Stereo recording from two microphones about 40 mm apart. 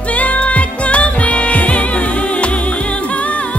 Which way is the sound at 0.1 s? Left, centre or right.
Left.